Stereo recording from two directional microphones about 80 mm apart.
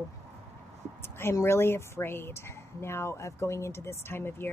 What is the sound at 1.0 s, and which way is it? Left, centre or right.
A woman's voice, left.